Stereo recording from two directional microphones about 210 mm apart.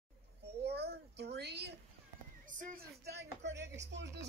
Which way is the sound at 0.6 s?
50° right (ahead or behind).